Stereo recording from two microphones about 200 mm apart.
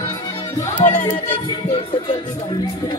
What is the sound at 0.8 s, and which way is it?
Speech, 40° left (ahead or behind).